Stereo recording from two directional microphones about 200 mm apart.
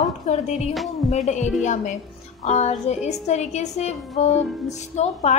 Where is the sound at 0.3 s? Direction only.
35° left (ahead or behind).